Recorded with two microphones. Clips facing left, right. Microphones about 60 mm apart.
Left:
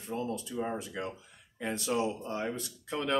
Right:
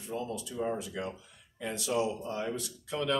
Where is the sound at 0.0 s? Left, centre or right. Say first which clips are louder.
Left 1 dB; left.